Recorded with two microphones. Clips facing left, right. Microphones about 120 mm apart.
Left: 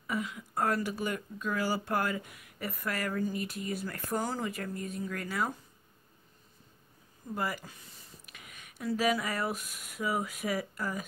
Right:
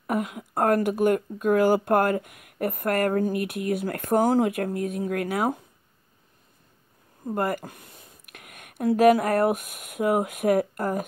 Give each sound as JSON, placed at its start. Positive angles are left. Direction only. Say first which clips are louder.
{"t": 0.0, "sound": "speech", "louder": "right 8 dB", "side_deg": -55}
{"t": 7.2, "sound": "speech", "louder": "right 9 dB", "side_deg": -55}